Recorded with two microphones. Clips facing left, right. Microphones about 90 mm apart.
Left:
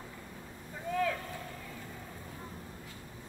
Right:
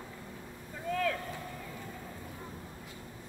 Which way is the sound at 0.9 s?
15° left (ahead or behind).